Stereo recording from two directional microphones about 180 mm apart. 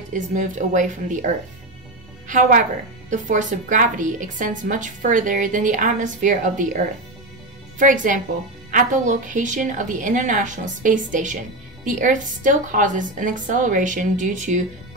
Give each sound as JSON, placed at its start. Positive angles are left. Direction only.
{"t": 0.1, "sound": "a woman's voice", "side_deg": -45}